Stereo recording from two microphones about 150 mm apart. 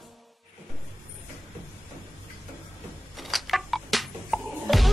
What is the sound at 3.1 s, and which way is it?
Music, centre (ahead or behind).